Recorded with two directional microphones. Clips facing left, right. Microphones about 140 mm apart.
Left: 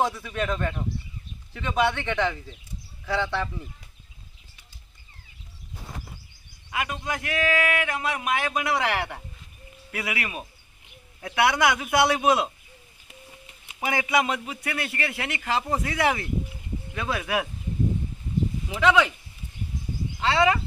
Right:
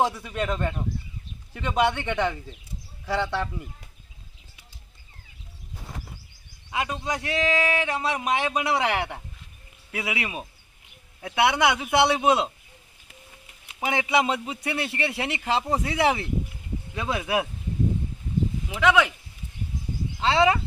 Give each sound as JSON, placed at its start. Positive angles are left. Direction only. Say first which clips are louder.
{"t": 0.2, "sound": "speech", "louder": "even", "side_deg": -20}
{"t": 6.7, "sound": "a man's voice", "louder": "right 1 dB", "side_deg": -25}
{"t": 8.7, "sound": "speech", "louder": "right 1 dB", "side_deg": -10}
{"t": 10.0, "sound": "speech", "louder": "right 1 dB", "side_deg": -20}
{"t": 13.7, "sound": "speech", "louder": "right 1 dB", "side_deg": -20}
{"t": 15.6, "sound": "speech", "louder": "right 2 dB", "side_deg": -10}
{"t": 18.7, "sound": "speech", "louder": "even", "side_deg": -10}
{"t": 20.2, "sound": "speech", "louder": "right 1 dB", "side_deg": -20}